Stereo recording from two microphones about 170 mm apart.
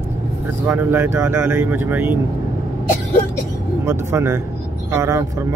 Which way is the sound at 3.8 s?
15° right (ahead or behind).